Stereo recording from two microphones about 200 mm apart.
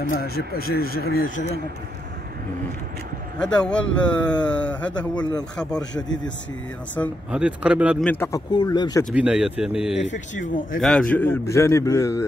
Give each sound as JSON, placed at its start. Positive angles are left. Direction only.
{"t": 0.1, "sound": "speech", "side_deg": 50}
{"t": 3.3, "sound": "speech", "side_deg": 5}
{"t": 5.8, "sound": "a man's voice", "side_deg": 20}
{"t": 7.2, "sound": "speech", "side_deg": -5}
{"t": 8.0, "sound": "speech", "side_deg": 10}
{"t": 9.1, "sound": "speech", "side_deg": -5}
{"t": 10.0, "sound": "speech", "side_deg": 40}
{"t": 10.8, "sound": "speech", "side_deg": 0}